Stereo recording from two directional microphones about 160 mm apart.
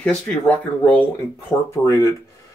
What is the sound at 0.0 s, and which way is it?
A man's voice, 5° left (ahead or behind).